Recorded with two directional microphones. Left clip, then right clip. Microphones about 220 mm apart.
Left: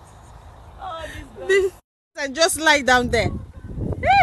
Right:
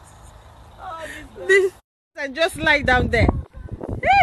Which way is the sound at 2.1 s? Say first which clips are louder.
Left 2 dB; 5° left (ahead or behind).